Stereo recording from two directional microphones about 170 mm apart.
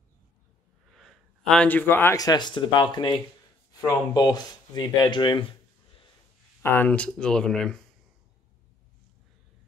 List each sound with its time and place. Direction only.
0.9 s speech: centre (ahead or behind); by 5.4 s 25° left (ahead or behind)
6.6 s speech: 10° left (ahead or behind)